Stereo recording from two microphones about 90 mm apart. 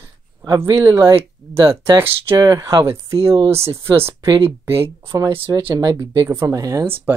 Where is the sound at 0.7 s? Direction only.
40° right (ahead or behind).